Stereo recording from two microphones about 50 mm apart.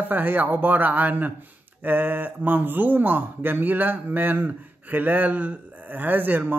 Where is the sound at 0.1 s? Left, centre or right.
Right.